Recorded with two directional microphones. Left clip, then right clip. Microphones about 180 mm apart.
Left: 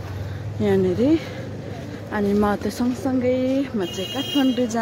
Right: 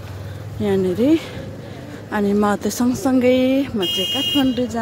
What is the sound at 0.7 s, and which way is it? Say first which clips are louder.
A woman's voice: right 2 dB; 10° right (ahead or behind).